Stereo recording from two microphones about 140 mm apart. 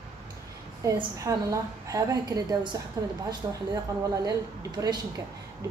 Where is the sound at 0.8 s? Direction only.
25° right (ahead or behind).